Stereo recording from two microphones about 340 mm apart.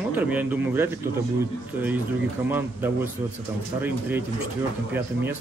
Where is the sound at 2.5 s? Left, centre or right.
Centre.